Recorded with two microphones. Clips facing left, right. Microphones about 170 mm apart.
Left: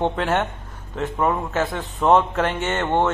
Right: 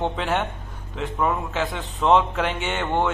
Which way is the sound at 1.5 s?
45° left (ahead or behind).